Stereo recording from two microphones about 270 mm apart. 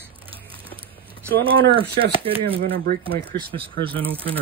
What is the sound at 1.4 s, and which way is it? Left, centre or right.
Speech, centre.